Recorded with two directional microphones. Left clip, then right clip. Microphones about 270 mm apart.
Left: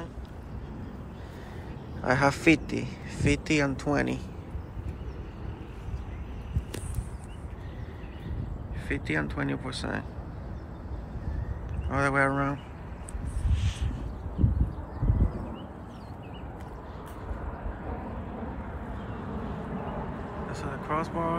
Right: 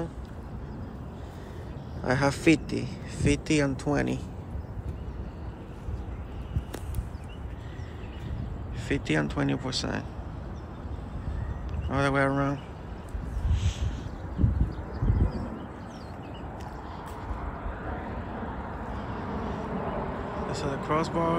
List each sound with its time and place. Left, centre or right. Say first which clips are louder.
2.0 s speech: left 1 dB; centre
8.8 s speech: right 2 dB; centre
11.9 s speech: even; centre
19.4 s vehicle: right 4 dB; right
20.5 s speech: right 3 dB; centre